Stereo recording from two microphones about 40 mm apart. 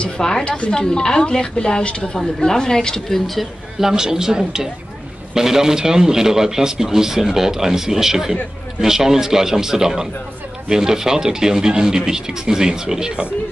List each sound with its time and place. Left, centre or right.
0.2 s a woman's voice: centre
2.1 s a woman's voice: centre
3.8 s a man's voice: centre